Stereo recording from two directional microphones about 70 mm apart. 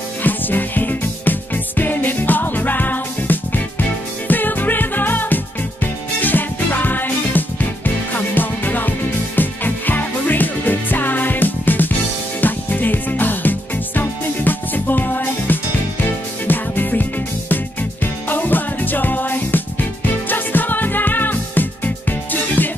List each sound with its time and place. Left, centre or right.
0.2 s music: left